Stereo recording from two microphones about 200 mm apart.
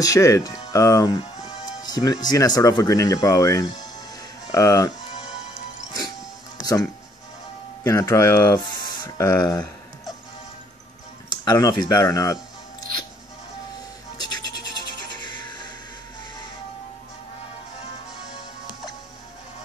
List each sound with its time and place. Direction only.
0.0 s speech: 15° left (ahead or behind)
6.6 s speech: 20° left (ahead or behind)
11.2 s speech: 20° left (ahead or behind)
14.1 s scratch: 20° left (ahead or behind)
14.7 s music: 20° left (ahead or behind)